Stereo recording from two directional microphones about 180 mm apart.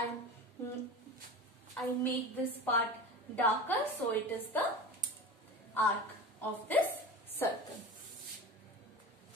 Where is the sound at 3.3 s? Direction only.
10° left (ahead or behind).